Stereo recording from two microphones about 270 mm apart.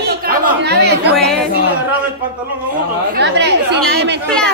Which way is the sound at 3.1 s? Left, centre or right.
Right.